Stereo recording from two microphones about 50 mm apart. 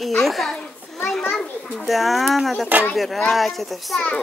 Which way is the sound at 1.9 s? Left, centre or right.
Centre.